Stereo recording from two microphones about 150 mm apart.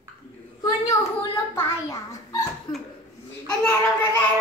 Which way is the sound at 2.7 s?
30° left (ahead or behind).